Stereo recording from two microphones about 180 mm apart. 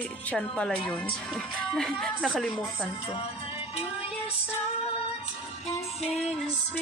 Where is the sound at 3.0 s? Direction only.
30° left (ahead or behind).